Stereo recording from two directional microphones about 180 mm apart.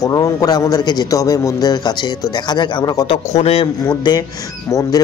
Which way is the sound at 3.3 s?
35° left (ahead or behind).